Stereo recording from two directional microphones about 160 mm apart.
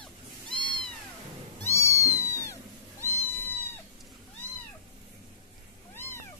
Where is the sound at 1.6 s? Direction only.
15° left (ahead or behind).